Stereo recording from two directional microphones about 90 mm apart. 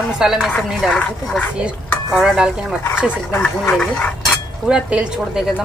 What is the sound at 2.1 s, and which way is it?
Speech, 5° right (ahead or behind).